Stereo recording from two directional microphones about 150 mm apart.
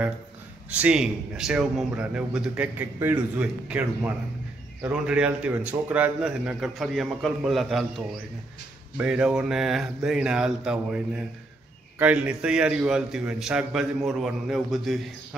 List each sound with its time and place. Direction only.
0.7 s a man's voice: 10° right (ahead or behind)
8.9 s a man's voice: 5° right (ahead or behind)